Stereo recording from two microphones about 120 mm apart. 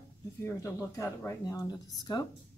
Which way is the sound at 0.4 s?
25° left (ahead or behind).